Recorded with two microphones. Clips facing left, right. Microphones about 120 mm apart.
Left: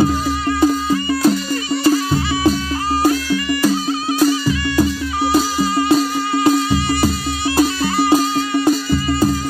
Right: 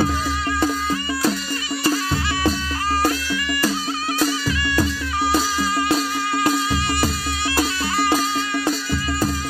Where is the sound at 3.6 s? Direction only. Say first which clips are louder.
Left 6 dB; 25° left (ahead or behind).